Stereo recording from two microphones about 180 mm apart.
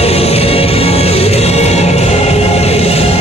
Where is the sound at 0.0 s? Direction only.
35° left (ahead or behind).